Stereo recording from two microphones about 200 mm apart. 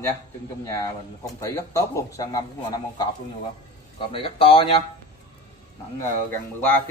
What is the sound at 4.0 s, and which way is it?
Speech, 25° left (ahead or behind).